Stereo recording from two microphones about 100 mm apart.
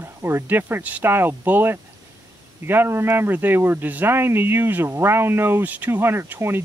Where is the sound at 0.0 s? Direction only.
25° right (ahead or behind).